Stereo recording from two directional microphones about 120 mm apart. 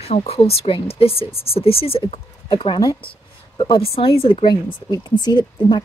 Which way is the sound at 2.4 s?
40° left (ahead or behind).